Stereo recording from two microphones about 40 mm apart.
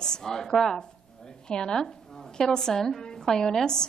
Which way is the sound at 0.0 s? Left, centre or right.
Centre.